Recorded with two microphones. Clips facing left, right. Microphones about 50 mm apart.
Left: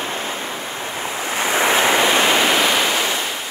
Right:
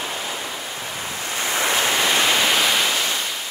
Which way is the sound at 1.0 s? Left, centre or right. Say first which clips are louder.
Left 5 dB; left.